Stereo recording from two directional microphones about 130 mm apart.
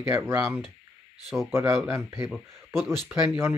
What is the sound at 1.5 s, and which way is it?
Speech, 20° right (ahead or behind).